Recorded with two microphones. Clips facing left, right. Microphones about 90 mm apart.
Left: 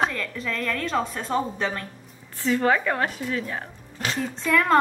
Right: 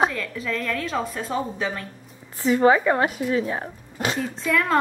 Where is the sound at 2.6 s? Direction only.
15° right (ahead or behind).